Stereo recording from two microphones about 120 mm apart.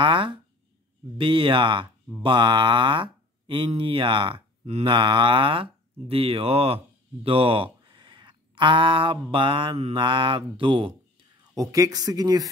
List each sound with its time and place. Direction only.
0.0 s speech: 40° right (ahead or behind)
11.5 s speech: 30° right (ahead or behind)